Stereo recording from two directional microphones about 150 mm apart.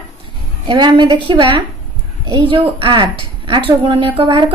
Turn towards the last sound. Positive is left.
turn(degrees=-30)  # may be behind; listen again after turning